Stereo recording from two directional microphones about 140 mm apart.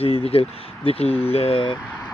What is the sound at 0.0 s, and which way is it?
Speech, 45° left (ahead or behind).